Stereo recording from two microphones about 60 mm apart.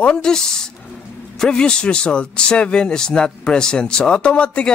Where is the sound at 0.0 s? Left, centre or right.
Centre.